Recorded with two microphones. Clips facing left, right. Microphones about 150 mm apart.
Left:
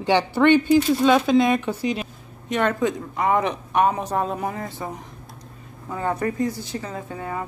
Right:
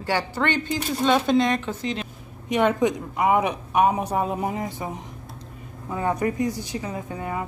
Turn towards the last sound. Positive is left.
turn(degrees=-20)  # may be behind; listen again after turning